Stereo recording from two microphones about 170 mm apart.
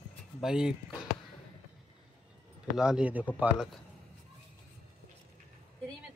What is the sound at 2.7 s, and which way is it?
Speech, 5° right (ahead or behind).